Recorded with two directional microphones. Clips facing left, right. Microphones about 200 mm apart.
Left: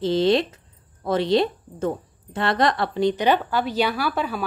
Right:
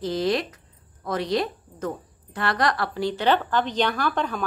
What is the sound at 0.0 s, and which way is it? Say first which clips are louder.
A woman's voice: left 5 dB; 25° left (ahead or behind).